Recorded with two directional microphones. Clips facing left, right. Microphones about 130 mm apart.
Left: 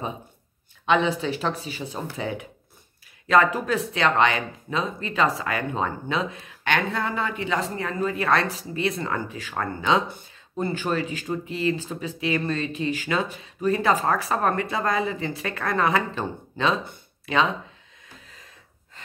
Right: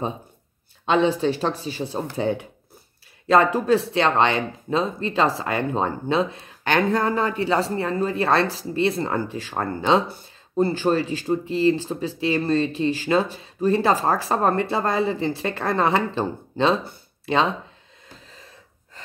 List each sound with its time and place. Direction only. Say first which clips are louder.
0.8 s speech: right 3 dB; 35° right (ahead or behind)